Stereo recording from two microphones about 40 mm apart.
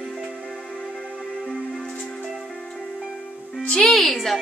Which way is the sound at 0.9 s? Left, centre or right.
Centre.